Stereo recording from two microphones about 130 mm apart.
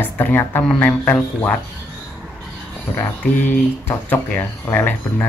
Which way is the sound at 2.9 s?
15° left (ahead or behind).